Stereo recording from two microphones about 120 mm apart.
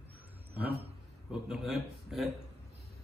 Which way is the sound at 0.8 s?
5° right (ahead or behind).